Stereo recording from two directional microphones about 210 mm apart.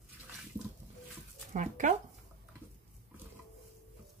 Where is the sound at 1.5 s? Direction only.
35° right (ahead or behind).